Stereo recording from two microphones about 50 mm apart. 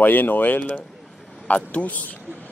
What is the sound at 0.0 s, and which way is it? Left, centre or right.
Speech, left.